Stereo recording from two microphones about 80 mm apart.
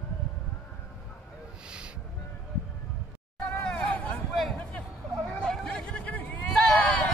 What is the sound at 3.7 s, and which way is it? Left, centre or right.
Hubbub, centre.